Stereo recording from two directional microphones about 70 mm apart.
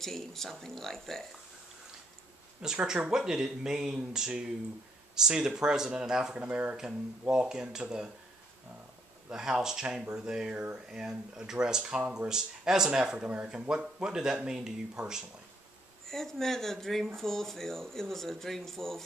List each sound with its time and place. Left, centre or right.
0.0 s speech: centre
2.6 s speech: centre
9.3 s speech: centre
10.5 s speech: right
10.9 s speech: centre
16.1 s speech: centre